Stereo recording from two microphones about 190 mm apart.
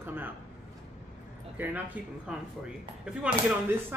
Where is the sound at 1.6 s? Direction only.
10° right (ahead or behind).